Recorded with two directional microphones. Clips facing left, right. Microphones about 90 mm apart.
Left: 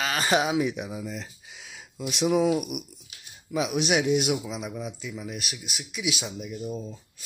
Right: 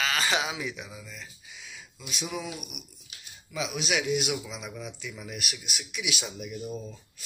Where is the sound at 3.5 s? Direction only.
50° left (ahead or behind).